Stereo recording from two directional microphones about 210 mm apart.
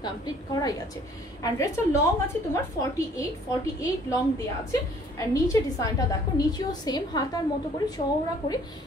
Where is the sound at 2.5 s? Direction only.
15° left (ahead or behind).